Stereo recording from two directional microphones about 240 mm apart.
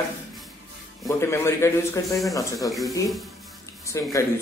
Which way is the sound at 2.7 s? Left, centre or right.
Centre.